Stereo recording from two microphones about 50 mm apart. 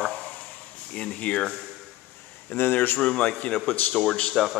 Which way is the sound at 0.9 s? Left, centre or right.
Left.